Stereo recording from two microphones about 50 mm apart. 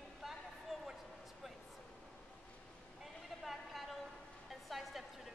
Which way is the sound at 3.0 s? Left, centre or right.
Centre.